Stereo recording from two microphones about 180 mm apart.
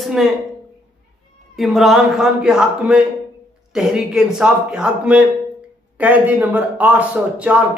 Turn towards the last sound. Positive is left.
turn(degrees=-5)  # may be behind; listen again after turning